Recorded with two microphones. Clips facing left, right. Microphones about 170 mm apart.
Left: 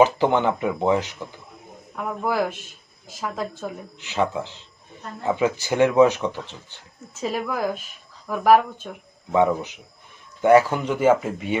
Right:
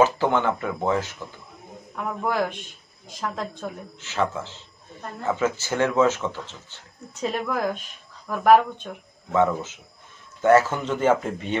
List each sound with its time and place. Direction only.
0.0 s a man's voice: 15° left (ahead or behind)
2.0 s speech: 5° left (ahead or behind)
4.0 s a man's voice: 15° left (ahead or behind)
7.2 s speech: 5° left (ahead or behind)
9.3 s a man's voice: 15° left (ahead or behind)